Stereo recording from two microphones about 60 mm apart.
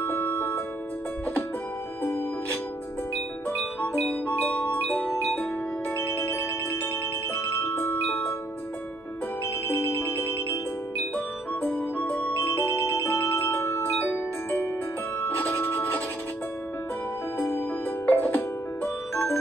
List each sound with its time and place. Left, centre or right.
0.0 s music: left
2.0 s music: left
4.5 s chime: left
5.2 s music: left
5.9 s ringtone: left
7.3 s music: left
9.7 s music: left
12.9 s music: left
13.6 s mallet percussion: left
15.1 s music: left
17.4 s music: left